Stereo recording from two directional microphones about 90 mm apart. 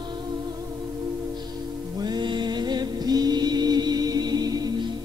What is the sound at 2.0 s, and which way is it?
Music, 55° right (ahead or behind).